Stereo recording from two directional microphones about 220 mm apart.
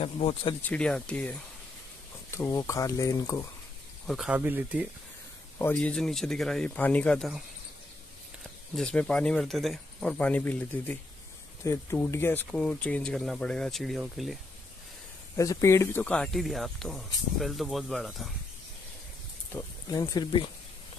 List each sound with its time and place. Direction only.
0.0 s speech: 25° left (ahead or behind)
0.6 s speech: 5° left (ahead or behind)
4.1 s speech: 5° right (ahead or behind)
5.6 s speech: 10° left (ahead or behind)
8.7 s speech: 5° left (ahead or behind)
15.3 s speech: 15° left (ahead or behind)
19.5 s speech: 15° left (ahead or behind)